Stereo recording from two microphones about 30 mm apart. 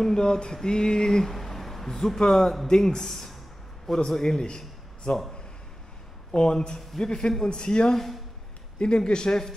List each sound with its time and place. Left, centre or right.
0.0 s a man's voice: left
1.3 s speech: centre
2.7 s a man's voice: left
3.0 s a man's voice: centre
6.3 s a man's voice: left
7.9 s speech: centre
8.7 s a man's voice: left